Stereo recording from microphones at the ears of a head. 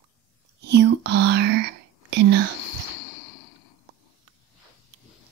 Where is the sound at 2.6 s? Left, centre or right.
Left.